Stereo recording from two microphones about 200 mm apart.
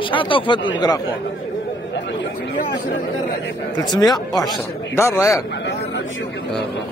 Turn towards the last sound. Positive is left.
turn(degrees=15)  # may be behind; listen again after turning